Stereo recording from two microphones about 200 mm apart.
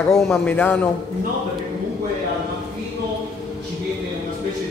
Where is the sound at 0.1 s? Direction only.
5° left (ahead or behind).